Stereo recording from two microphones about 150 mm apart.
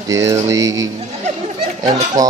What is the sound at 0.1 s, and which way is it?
Speech, 20° right (ahead or behind).